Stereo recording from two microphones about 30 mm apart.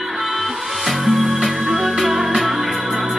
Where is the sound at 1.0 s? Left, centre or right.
Centre.